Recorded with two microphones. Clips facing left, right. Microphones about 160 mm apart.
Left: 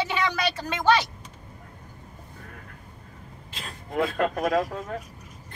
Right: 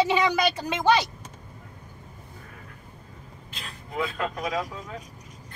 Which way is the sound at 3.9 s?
55° left (ahead or behind).